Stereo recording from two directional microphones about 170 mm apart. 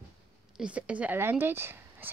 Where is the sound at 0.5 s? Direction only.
5° right (ahead or behind).